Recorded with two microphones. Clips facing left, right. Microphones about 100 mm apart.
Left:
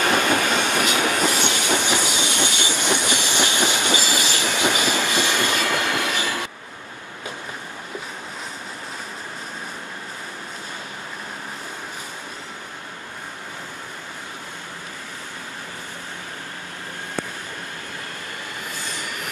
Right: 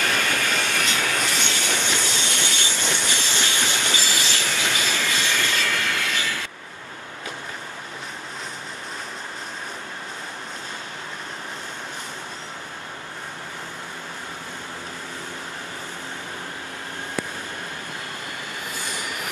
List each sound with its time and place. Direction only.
0.1 s train: 25° left (ahead or behind)